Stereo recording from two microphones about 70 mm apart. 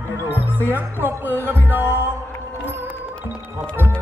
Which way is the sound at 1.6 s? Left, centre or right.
Right.